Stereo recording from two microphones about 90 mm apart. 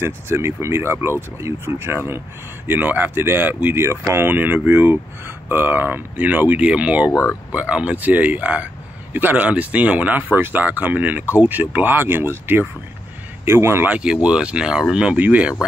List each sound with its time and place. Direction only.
0.0 s speech: 30° right (ahead or behind)
7.1 s speech: 25° left (ahead or behind)
7.5 s speech: 10° right (ahead or behind); by 13.8 s 30° right (ahead or behind)
13.8 s speech: 10° right (ahead or behind)